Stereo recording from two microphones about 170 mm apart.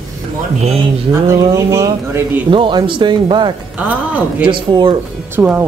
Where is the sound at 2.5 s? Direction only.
30° right (ahead or behind).